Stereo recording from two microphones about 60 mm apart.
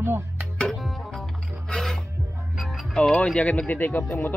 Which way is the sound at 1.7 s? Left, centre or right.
Centre.